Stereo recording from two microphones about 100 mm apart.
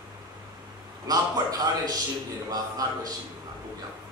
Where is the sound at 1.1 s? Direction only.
40° right (ahead or behind).